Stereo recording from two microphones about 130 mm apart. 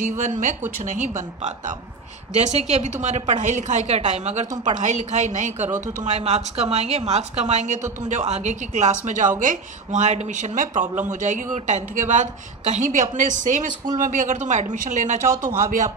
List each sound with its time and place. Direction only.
0.2 s a woman's voice: 70° right (ahead or behind)
9.0 s a woman's voice: 70° right (ahead or behind)
13.9 s a woman's voice: 85° right; by 15.2 s 70° right (ahead or behind)
15.4 s speech: 85° right